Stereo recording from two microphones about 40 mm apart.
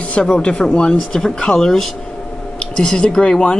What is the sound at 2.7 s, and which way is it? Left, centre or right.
Speech, left.